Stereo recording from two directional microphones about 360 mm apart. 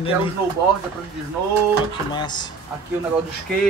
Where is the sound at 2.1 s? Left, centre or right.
Centre.